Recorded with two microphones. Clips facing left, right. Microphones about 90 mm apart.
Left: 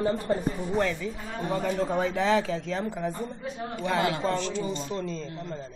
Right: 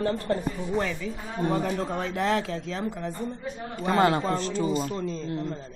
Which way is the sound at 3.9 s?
40° right (ahead or behind).